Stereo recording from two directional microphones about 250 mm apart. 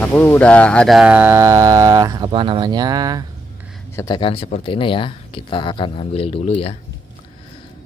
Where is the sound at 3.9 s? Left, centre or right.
Centre.